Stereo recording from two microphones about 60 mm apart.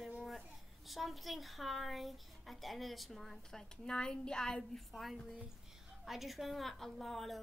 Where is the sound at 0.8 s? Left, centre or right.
Centre.